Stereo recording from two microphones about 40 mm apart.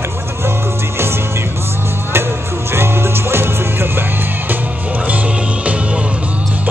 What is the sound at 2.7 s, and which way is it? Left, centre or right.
Music, right.